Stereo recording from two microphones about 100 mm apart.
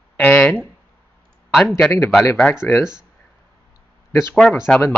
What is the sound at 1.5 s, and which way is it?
Speech, 5° left (ahead or behind).